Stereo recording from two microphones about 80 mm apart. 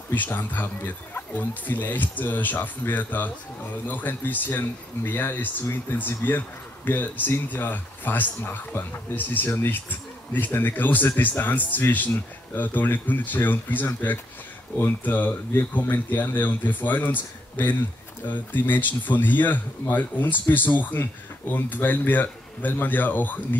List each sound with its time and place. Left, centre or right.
0.1 s speech: left